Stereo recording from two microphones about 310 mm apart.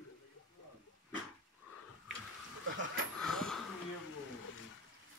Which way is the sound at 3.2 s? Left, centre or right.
Centre.